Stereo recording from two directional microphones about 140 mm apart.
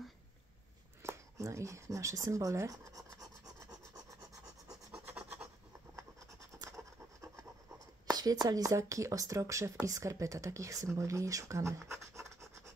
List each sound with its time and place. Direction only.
1.0 s a sound: 20° right (ahead or behind)
4.6 s rub: 5° right (ahead or behind)
8.1 s speech: 30° right (ahead or behind)
10.9 s scratch: 20° right (ahead or behind)